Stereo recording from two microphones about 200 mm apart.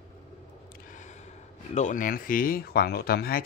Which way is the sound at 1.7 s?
40° left (ahead or behind).